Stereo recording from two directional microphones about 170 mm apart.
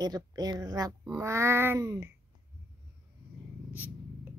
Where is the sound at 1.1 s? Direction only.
15° right (ahead or behind).